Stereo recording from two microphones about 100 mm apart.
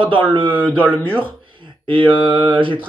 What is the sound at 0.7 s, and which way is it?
Speech, 20° right (ahead or behind).